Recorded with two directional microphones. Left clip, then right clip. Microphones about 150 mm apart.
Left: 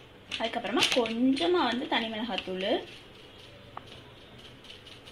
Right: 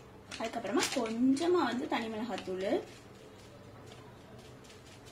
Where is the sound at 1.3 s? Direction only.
25° left (ahead or behind).